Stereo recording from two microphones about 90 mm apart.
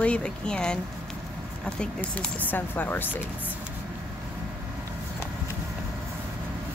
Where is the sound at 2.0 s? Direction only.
20° left (ahead or behind).